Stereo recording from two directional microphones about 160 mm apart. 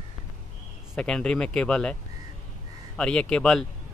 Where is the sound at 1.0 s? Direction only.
5° left (ahead or behind).